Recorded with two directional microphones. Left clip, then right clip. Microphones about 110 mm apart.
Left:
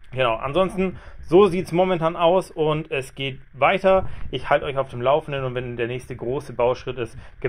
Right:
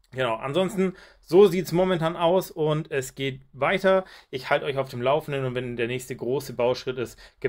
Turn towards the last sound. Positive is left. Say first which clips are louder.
# left 3 dB
turn(degrees=-20)  # may be behind; listen again after turning